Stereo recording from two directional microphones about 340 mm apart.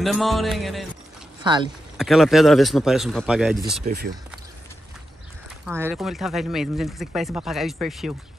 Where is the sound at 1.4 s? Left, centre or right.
Centre.